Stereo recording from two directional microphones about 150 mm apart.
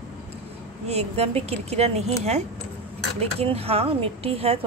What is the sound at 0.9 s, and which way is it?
Speech, 45° right (ahead or behind).